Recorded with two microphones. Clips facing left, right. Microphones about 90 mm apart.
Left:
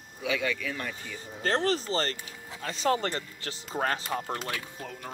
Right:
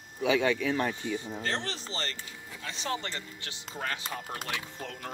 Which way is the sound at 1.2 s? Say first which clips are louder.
Left 5 dB; 40° left (ahead or behind).